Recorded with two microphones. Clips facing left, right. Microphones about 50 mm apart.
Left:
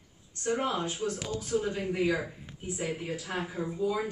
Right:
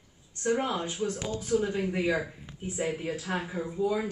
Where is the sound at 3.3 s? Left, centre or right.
Centre.